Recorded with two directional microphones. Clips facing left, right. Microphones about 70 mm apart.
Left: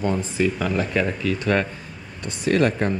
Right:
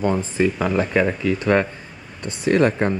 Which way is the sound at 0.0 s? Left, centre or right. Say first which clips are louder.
Right 2 dB; right.